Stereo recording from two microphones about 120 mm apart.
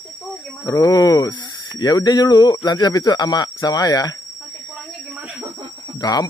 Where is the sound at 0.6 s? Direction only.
35° left (ahead or behind).